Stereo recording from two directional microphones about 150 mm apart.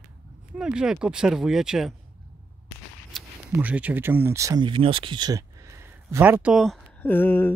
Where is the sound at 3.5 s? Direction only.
10° right (ahead or behind).